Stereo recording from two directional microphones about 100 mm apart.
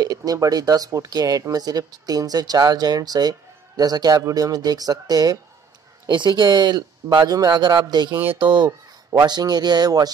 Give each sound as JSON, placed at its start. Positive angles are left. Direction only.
{"t": 0.0, "sound": "speech", "side_deg": -40}
{"t": 6.0, "sound": "speech", "side_deg": -50}